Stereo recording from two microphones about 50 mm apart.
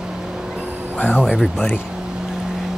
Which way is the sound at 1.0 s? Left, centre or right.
Left.